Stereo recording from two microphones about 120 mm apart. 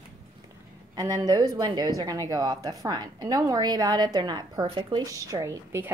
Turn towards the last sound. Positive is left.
turn(degrees=-20)  # may be behind; listen again after turning